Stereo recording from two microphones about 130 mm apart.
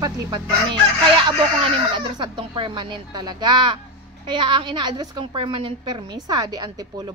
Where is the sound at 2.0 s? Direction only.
35° right (ahead or behind).